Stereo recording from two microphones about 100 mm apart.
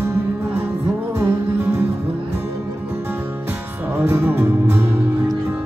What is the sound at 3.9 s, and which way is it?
Music, 20° right (ahead or behind).